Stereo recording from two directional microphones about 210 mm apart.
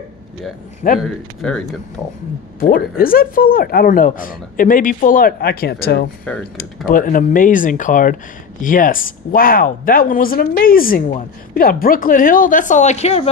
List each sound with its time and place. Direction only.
0.9 s speech: centre (ahead or behind)
2.6 s speech: 45° left (ahead or behind)
6.3 s speech: 5° left (ahead or behind)
6.9 s speech: 40° left (ahead or behind)